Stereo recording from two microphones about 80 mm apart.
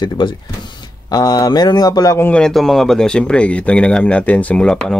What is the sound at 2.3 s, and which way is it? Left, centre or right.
Speech, centre.